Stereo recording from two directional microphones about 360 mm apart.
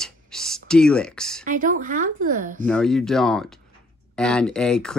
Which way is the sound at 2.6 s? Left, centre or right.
Centre.